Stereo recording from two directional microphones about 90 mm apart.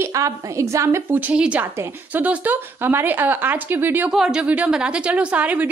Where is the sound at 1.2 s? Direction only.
15° right (ahead or behind).